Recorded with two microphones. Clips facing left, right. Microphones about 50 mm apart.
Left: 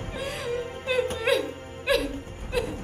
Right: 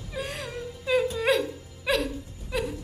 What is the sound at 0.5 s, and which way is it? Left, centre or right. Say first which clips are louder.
Music: left 6 dB; left.